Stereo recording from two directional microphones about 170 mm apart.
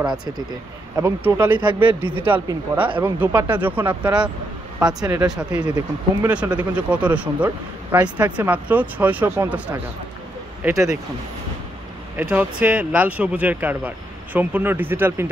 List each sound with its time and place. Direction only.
0.9 s speech: 15° right (ahead or behind)
1.5 s speech: 25° right (ahead or behind)
2.2 s speech: 10° right (ahead or behind)
6.7 s speech: 10° right (ahead or behind)
12.2 s speech: 10° right (ahead or behind)